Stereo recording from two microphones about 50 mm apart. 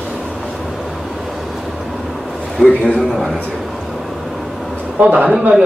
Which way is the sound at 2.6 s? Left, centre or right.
Centre.